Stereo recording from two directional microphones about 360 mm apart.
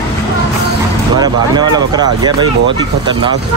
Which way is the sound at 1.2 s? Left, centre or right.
Centre.